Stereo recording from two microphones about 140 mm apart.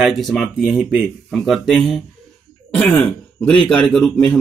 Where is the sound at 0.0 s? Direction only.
Centre (ahead or behind).